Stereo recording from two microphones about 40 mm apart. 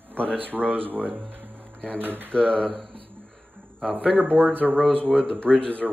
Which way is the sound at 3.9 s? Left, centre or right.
Right.